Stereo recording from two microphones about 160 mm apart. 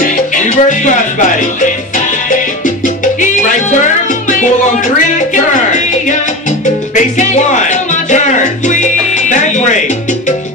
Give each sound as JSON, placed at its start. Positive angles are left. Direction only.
{"t": 0.0, "sound": "salsa music", "side_deg": 55}
{"t": 4.3, "sound": "music", "side_deg": 55}